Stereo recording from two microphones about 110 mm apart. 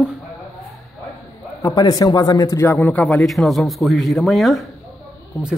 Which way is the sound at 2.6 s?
15° left (ahead or behind).